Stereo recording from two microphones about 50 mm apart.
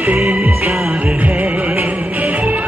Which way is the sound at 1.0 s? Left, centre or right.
Right.